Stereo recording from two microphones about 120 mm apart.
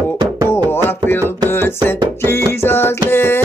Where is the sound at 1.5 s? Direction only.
20° left (ahead or behind).